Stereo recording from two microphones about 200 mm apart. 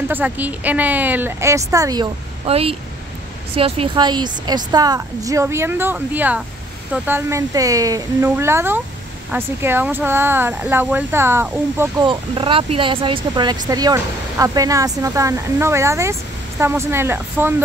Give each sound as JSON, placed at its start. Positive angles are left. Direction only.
{"t": 0.1, "sound": "a woman's voice", "side_deg": -10}
{"t": 12.0, "sound": "speech", "side_deg": -25}